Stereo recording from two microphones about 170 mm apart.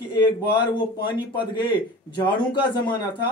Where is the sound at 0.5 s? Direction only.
30° left (ahead or behind).